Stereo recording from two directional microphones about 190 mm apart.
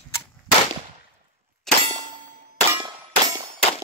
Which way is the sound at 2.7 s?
20° right (ahead or behind).